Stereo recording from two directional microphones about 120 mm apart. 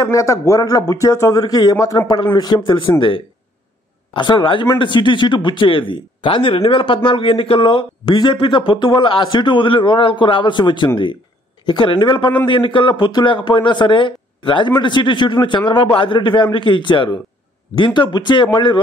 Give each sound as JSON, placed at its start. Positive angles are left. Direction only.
{"t": 0.0, "sound": "a man's voice", "side_deg": 25}